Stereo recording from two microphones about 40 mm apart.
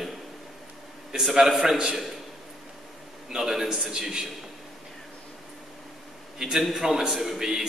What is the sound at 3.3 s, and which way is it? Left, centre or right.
A man's voice, centre.